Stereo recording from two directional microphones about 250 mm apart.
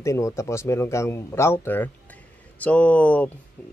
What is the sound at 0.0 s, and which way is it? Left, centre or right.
Speech, centre.